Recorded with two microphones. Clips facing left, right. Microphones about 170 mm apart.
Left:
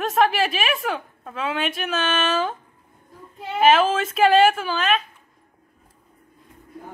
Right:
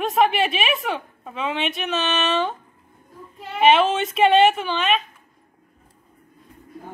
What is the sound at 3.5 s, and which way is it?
A woman's voice, centre (ahead or behind).